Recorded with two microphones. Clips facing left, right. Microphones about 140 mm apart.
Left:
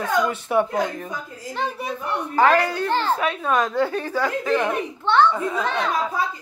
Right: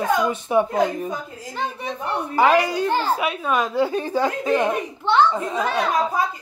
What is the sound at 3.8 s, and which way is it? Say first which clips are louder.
A woman's voice: right 2 dB; 15° right (ahead or behind).